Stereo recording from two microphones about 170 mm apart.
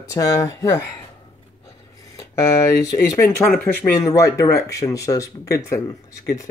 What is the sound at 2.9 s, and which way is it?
Speech, 15° left (ahead or behind).